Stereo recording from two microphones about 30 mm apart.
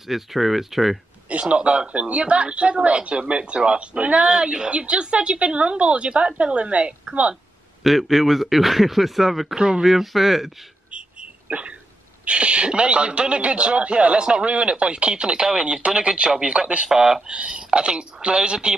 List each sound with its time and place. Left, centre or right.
0.0 s speech: centre
1.4 s a man's voice: right
7.8 s speech: centre
9.6 s speech: right
9.8 s speech: centre
10.9 s a sound: right
12.3 s a man's voice: right
15.0 s a man's voice: right
16.9 s speech: right
17.3 s a man's voice: right